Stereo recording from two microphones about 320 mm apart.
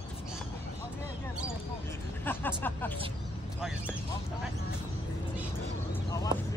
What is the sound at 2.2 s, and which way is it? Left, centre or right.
Music, centre.